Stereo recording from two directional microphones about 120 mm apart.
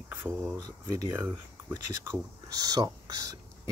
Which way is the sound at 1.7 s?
30° right (ahead or behind).